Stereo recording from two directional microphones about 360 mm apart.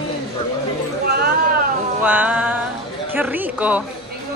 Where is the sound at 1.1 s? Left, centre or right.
Right.